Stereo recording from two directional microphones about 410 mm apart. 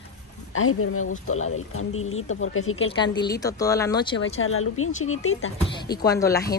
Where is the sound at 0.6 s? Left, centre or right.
Left.